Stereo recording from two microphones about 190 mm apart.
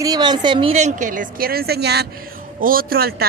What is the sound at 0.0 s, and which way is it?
A woman's voice, 20° right (ahead or behind).